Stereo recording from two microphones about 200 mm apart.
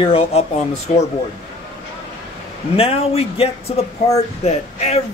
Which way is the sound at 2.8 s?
30° left (ahead or behind).